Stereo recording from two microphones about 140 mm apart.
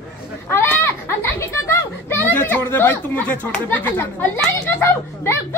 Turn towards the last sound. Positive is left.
turn(degrees=15)  # may be behind; listen again after turning